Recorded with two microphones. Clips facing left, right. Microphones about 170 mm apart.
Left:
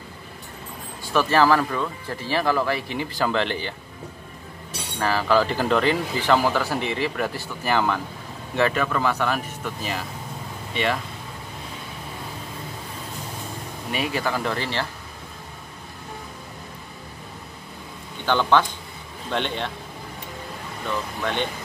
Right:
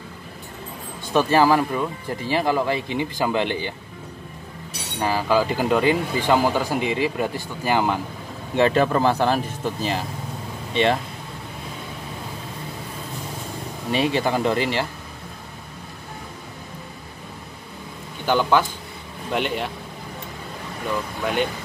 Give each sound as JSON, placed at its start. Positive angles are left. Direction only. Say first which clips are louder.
{"t": 1.0, "sound": "speech", "louder": "right 2 dB", "side_deg": -20}
{"t": 4.9, "sound": "speech", "louder": "even", "side_deg": -15}
{"t": 8.5, "sound": "speech", "louder": "right 4 dB", "side_deg": -30}
{"t": 13.9, "sound": "speech", "louder": "right 5 dB", "side_deg": -25}
{"t": 18.2, "sound": "speech", "louder": "right 1 dB", "side_deg": -10}
{"t": 21.2, "sound": "speech", "louder": "right 4 dB", "side_deg": -10}